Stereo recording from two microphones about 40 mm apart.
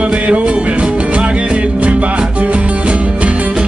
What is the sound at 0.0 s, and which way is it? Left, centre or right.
Music, right.